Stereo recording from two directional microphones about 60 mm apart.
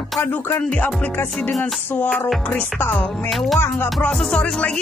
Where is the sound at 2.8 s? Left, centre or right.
Left.